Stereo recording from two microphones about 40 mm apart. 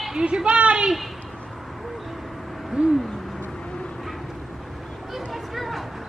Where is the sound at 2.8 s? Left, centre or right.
Right.